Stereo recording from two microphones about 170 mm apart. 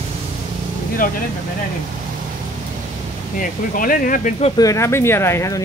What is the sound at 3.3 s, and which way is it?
Speech, 55° left (ahead or behind).